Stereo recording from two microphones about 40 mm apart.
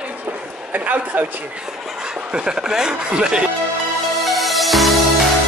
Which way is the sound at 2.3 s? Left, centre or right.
Right.